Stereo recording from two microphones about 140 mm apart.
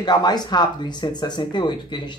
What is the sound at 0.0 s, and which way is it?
Speech, 30° left (ahead or behind).